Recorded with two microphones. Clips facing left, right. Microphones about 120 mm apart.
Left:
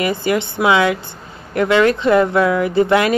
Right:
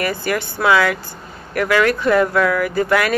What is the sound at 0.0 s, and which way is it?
A woman's voice, 20° left (ahead or behind).